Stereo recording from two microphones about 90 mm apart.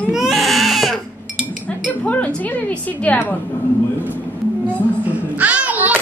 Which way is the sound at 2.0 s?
15° left (ahead or behind).